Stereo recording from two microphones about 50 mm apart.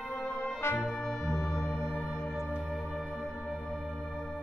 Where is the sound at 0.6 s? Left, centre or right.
Left.